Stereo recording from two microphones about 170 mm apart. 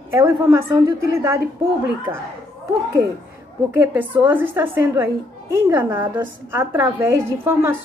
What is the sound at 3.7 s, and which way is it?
A woman's voice, 10° right (ahead or behind).